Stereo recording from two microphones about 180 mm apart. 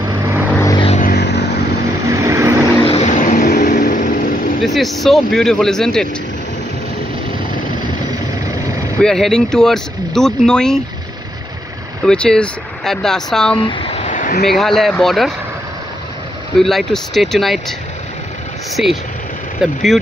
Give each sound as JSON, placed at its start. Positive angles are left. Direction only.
{"t": 0.0, "sound": "vehicle", "side_deg": -15}
{"t": 0.6, "sound": "vehicle", "side_deg": 20}
{"t": 0.8, "sound": "vehicle", "side_deg": 45}
{"t": 1.1, "sound": "vehicle", "side_deg": 70}
{"t": 2.0, "sound": "vehicle", "side_deg": -15}
{"t": 2.9, "sound": "vehicle", "side_deg": 40}
{"t": 4.6, "sound": "speech", "side_deg": 0}
{"t": 9.0, "sound": "speech", "side_deg": 5}
{"t": 12.1, "sound": "speech", "side_deg": 5}
{"t": 13.6, "sound": "a sound", "side_deg": 25}
{"t": 14.0, "sound": "a sound", "side_deg": 45}
{"t": 14.4, "sound": "speech", "side_deg": 0}
{"t": 16.5, "sound": "speech", "side_deg": 0}
{"t": 18.8, "sound": "speech", "side_deg": 0}